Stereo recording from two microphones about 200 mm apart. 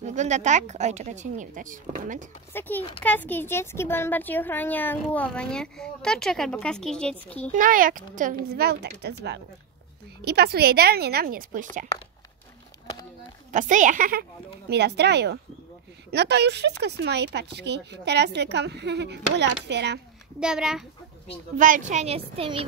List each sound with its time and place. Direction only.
0.0 s speech: 35° right (ahead or behind)
3.0 s speech: 10° left (ahead or behind)
7.5 s speech: 45° right (ahead or behind)
13.5 s speech: 40° right (ahead or behind)
14.7 s speech: 55° right (ahead or behind)
20.3 s a child's voice: 5° right (ahead or behind)
21.5 s speech: 40° right (ahead or behind)